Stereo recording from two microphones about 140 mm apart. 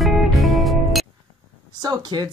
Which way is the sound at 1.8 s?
30° right (ahead or behind).